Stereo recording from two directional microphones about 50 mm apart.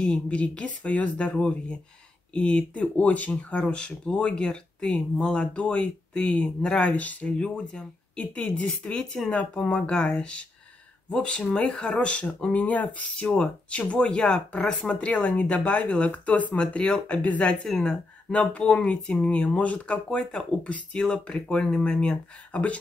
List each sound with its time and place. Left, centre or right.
0.0 s speech: left
7.3 s speech: centre
16.5 s speech: centre
17.6 s speech: centre
18.3 s speech: left